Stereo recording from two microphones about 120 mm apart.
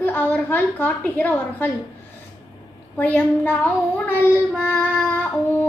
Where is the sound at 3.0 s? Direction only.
15° left (ahead or behind).